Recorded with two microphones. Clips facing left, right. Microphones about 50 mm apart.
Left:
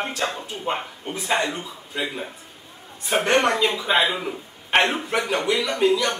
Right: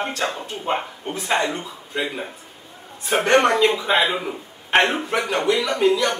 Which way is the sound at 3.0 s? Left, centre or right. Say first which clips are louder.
Right 3 dB; centre.